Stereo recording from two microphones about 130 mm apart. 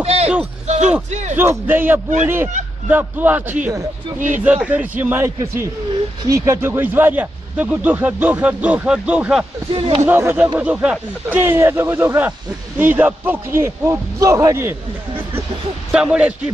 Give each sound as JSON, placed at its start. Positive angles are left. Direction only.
{"t": 0.0, "sound": "a sound", "side_deg": -55}
{"t": 0.7, "sound": "speech", "side_deg": -60}
{"t": 1.3, "sound": "speech", "side_deg": -15}
{"t": 9.7, "sound": "speech", "side_deg": -45}
{"t": 10.0, "sound": "speech", "side_deg": -15}
{"t": 15.9, "sound": "speech", "side_deg": -5}